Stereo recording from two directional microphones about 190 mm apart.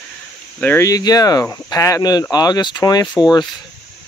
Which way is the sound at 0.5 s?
10° left (ahead or behind).